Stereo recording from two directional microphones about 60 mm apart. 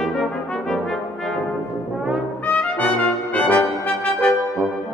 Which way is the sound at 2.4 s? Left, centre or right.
Left.